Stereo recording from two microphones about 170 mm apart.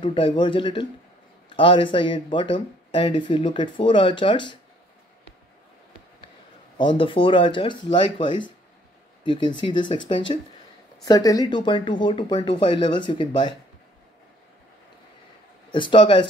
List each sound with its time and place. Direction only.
0.0 s a man's voice: 30° left (ahead or behind)
6.8 s speech: 30° left (ahead or behind)
15.7 s speech: 30° left (ahead or behind)